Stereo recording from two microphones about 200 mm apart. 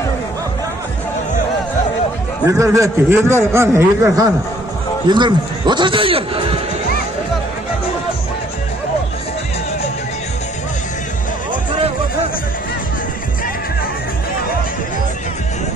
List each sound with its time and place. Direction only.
2.4 s a man's voice: 15° right (ahead or behind)